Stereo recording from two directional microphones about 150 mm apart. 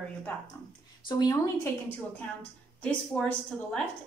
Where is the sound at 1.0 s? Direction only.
25° left (ahead or behind).